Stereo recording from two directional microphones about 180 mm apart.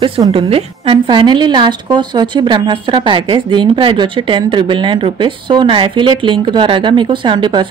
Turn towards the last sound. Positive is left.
turn(degrees=-25)  # may be behind; listen again after turning